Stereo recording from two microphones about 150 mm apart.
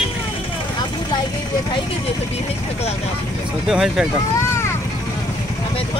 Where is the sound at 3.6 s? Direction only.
5° right (ahead or behind).